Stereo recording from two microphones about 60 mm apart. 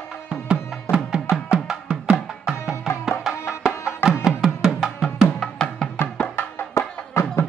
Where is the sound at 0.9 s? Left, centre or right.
Left.